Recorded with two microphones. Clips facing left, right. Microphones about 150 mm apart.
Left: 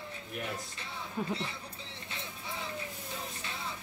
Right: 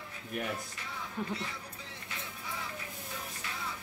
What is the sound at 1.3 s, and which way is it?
Speech, 25° left (ahead or behind).